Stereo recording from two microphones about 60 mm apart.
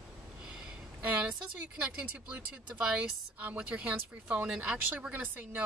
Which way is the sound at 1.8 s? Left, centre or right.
Right.